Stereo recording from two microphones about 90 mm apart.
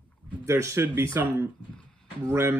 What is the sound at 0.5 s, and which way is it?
Speech, 30° right (ahead or behind).